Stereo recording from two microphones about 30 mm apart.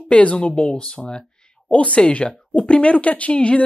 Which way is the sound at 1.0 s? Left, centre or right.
Left.